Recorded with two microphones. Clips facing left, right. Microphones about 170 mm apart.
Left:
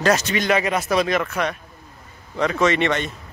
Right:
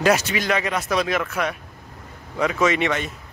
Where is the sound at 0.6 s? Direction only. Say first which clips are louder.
Left 3 dB; 5° left (ahead or behind).